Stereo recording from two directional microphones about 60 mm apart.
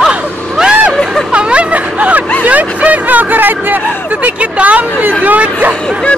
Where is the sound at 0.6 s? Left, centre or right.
Centre.